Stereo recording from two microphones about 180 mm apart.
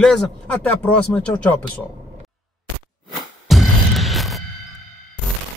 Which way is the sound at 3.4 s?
Centre (ahead or behind).